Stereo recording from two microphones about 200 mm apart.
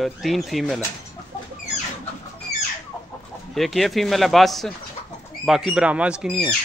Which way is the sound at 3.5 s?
Centre (ahead or behind).